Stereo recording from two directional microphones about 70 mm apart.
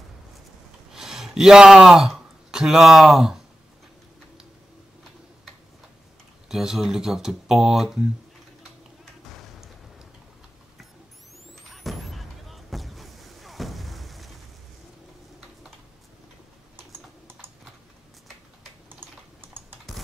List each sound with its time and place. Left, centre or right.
0.9 s a man's voice: centre
6.5 s speech: centre
11.7 s vehicle: centre
16.7 s typing: right
18.9 s typing: right